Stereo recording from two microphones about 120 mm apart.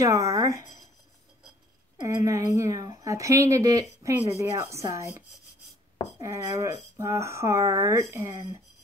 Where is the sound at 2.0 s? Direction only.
25° right (ahead or behind).